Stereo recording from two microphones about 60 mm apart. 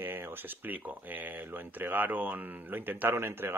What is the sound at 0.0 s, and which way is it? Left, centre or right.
Speech, right.